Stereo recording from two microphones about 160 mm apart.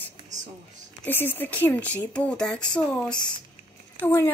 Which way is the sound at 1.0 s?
15° left (ahead or behind).